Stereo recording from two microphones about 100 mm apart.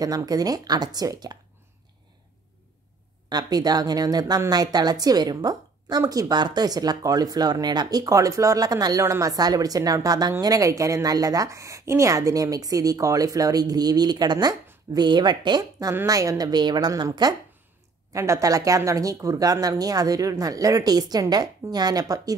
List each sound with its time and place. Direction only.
0.0 s a woman's voice: 35° right (ahead or behind)
3.3 s a woman's voice: 40° right (ahead or behind)
16.1 s a woman's voice: 35° right (ahead or behind)
18.1 s a woman's voice: 30° right (ahead or behind)